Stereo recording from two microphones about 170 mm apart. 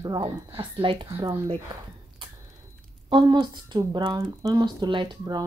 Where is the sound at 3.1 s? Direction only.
25° right (ahead or behind).